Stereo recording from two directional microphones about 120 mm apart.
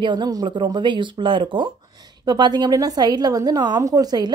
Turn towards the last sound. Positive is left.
turn(degrees=-35)  # may be behind; listen again after turning